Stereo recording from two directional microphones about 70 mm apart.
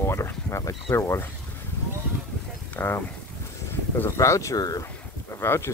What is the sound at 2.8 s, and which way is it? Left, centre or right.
Speech, left.